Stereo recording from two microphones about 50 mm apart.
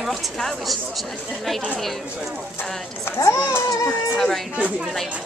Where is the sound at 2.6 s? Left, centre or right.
Left.